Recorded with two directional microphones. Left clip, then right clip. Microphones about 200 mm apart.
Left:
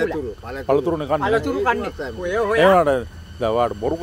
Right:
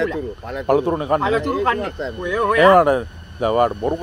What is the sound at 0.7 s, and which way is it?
Speech, 15° left (ahead or behind).